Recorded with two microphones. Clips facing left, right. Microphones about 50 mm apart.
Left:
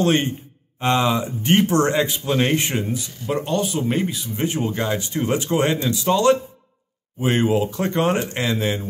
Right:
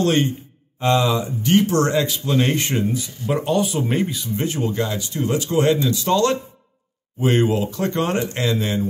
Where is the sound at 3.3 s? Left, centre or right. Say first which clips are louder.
Right 2 dB; centre.